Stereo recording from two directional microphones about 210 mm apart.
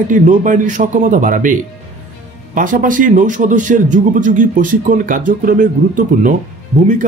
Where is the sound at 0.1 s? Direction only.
40° right (ahead or behind).